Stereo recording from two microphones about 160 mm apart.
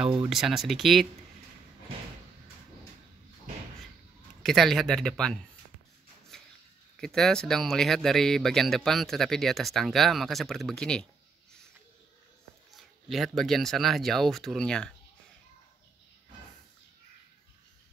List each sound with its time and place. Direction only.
0.0 s speech: 30° right (ahead or behind)
0.3 s speech: centre (ahead or behind)
4.4 s speech: centre (ahead or behind)
6.3 s a sound: 5° left (ahead or behind)
7.0 s speech: 5° left (ahead or behind)
12.7 s speech: centre (ahead or behind)